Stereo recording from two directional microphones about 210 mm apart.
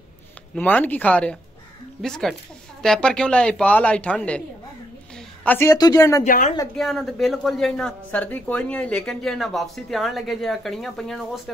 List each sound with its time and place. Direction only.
0.6 s a woman's voice: 5° left (ahead or behind)
5.4 s speech: 10° left (ahead or behind)
6.2 s speech: 40° left (ahead or behind)
6.8 s a woman's voice: centre (ahead or behind)